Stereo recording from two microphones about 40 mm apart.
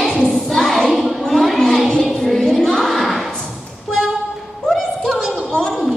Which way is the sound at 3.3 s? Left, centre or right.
Left.